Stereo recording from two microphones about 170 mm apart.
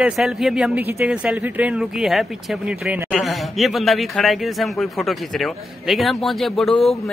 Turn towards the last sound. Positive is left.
turn(degrees=0)  # may be behind; listen again after turning